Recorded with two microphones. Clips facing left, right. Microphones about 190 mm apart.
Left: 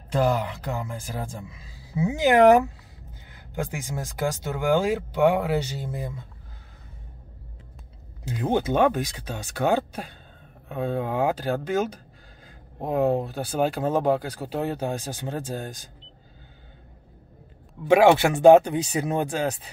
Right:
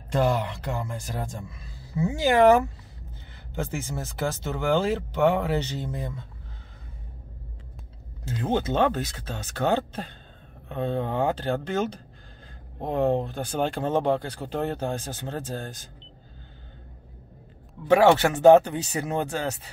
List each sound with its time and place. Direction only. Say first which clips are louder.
0.1 s speech: left 1 dB; 5° left (ahead or behind)
2.0 s speech: left 2 dB; 20° left (ahead or behind)
8.3 s speech: left 2 dB; 15° left (ahead or behind)
17.8 s speech: left 1 dB; 10° left (ahead or behind)